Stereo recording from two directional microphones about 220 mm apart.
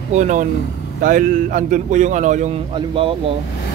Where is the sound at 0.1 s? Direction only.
35° right (ahead or behind).